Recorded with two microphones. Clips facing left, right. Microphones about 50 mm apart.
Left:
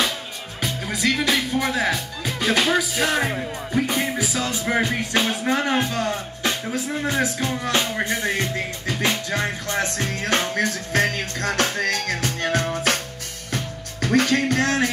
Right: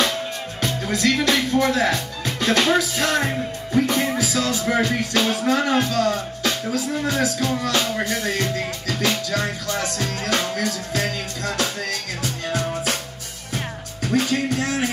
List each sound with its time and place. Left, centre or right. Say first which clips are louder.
0.6 s speech: right 2 dB; centre
4.2 s music: right 3 dB; centre
5.5 s speech: right 1 dB; left
6.9 s music: even; centre; by 13.0 s left
14.0 s music: left 2 dB; left